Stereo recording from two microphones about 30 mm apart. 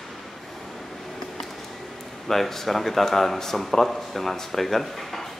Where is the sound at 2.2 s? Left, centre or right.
Centre.